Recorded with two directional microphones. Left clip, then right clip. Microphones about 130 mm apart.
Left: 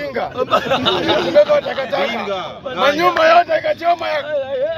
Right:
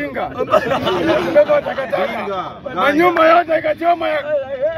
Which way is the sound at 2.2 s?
35° right (ahead or behind).